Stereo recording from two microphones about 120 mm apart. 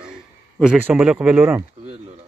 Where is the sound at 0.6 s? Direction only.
10° right (ahead or behind).